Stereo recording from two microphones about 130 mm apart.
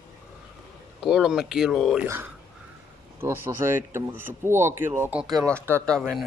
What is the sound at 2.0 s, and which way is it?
Speech, 20° right (ahead or behind).